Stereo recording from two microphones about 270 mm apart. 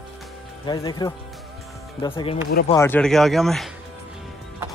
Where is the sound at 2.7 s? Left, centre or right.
Centre.